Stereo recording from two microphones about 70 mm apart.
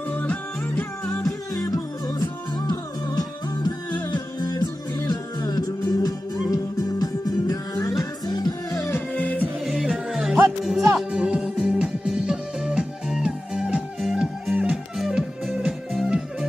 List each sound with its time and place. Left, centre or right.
0.1 s music: left
1.2 s music: left
4.0 s music: left
5.0 s music: left
6.0 s music: left
8.7 s music: left
9.1 s music: left
9.7 s music: centre
11.1 s music: centre